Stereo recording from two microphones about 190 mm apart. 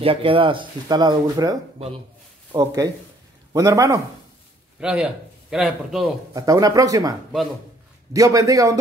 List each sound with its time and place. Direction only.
0.0 s speech: 30° right (ahead or behind)
4.7 s a man's voice: 5° right (ahead or behind)
6.3 s speech: 20° right (ahead or behind)